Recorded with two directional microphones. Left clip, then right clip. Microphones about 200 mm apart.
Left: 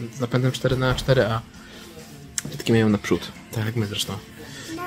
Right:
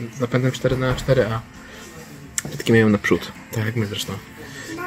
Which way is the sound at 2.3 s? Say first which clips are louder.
Right 4 dB; centre (ahead or behind).